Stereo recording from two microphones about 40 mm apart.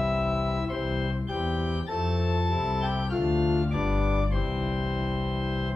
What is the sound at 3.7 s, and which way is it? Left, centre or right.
Organ, centre.